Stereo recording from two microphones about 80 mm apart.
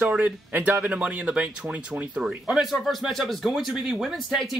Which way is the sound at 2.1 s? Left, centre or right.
Centre.